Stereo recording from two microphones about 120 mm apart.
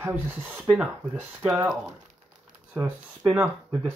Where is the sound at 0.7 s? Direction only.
5° right (ahead or behind).